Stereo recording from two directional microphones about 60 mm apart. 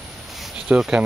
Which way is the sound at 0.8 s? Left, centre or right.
Centre.